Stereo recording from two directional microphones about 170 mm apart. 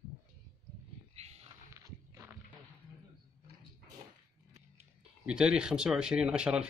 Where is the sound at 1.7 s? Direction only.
15° right (ahead or behind).